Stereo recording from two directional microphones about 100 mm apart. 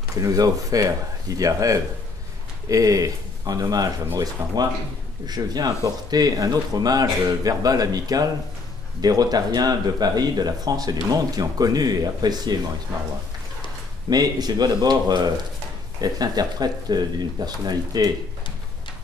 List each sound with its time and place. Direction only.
0.1 s speech: 35° right (ahead or behind)
4.4 s speech: 25° right (ahead or behind)
5.2 s speech: 40° right (ahead or behind)
14.1 s speech: 40° right (ahead or behind)